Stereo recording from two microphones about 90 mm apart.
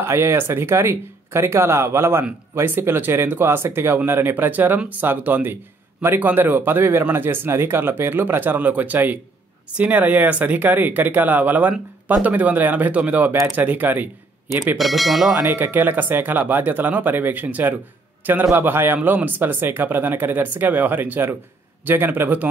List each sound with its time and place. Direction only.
0.0 s speech: 30° right (ahead or behind)
14.8 s speech: centre (ahead or behind)
15.4 s speech: 25° right (ahead or behind)